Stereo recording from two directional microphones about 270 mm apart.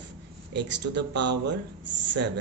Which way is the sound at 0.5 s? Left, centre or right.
Right.